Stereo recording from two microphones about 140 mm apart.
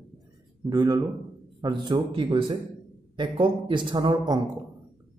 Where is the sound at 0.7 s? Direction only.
30° right (ahead or behind).